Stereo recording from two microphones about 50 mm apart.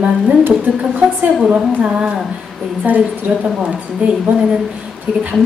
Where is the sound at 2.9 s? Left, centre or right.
Right.